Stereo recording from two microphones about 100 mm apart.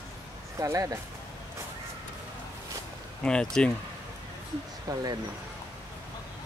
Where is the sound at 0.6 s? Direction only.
35° right (ahead or behind).